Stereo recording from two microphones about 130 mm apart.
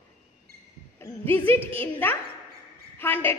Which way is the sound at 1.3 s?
15° left (ahead or behind).